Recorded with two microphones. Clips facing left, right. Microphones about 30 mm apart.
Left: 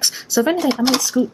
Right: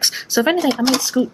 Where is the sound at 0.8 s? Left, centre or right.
Centre.